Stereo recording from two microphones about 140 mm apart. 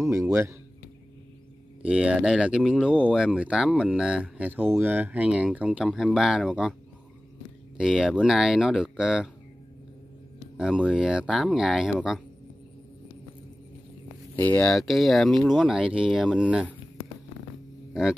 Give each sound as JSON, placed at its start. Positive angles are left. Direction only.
{"t": 0.0, "sound": "speech", "side_deg": -20}
{"t": 1.8, "sound": "speech", "side_deg": -10}
{"t": 7.7, "sound": "speech", "side_deg": -5}
{"t": 10.6, "sound": "speech", "side_deg": -5}
{"t": 14.3, "sound": "speech", "side_deg": 10}